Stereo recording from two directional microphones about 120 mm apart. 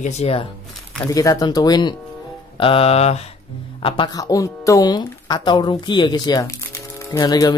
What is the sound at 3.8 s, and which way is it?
Speech, 45° left (ahead or behind).